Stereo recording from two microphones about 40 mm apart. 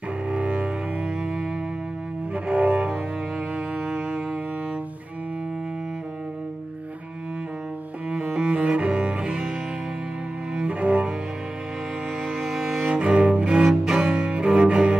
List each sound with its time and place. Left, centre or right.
0.3 s cello: right
3.5 s music: right
8.1 s cello: right
10.7 s cello: right
12.2 s music: centre
12.8 s cello: right